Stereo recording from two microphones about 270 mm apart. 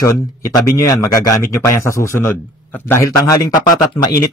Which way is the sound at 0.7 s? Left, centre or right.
Centre.